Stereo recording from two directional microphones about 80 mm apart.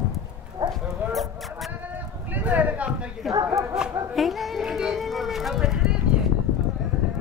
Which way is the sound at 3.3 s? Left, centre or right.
Right.